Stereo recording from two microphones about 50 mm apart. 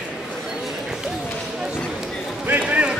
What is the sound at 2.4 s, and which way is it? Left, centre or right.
Basketball bounce, right.